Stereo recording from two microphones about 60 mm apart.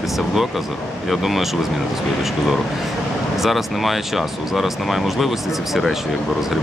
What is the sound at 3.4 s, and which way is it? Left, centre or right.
Speech, centre.